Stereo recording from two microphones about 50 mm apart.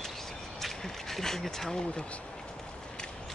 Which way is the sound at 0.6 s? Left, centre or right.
Centre.